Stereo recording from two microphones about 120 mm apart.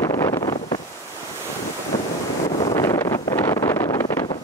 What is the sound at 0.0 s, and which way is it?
Wind noise, 25° left (ahead or behind).